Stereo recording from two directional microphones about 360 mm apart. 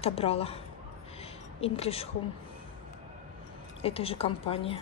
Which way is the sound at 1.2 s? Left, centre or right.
Centre.